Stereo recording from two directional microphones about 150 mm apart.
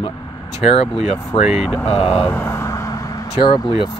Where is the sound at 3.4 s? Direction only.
30° left (ahead or behind).